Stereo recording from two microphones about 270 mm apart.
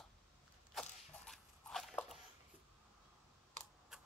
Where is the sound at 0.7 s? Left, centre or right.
Centre.